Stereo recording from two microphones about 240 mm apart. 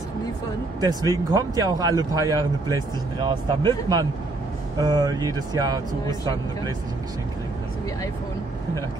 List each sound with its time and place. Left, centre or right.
0.7 s speech: centre